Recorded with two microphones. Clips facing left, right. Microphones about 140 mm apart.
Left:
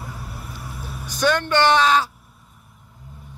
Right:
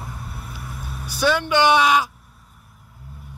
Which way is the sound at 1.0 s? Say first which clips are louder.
Even; 10° right (ahead or behind).